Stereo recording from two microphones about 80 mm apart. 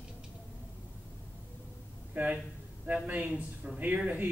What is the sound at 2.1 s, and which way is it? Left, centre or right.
Speech, centre.